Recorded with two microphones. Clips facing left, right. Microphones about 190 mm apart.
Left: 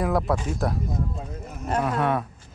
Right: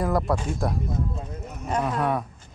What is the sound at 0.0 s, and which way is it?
Speech, centre (ahead or behind).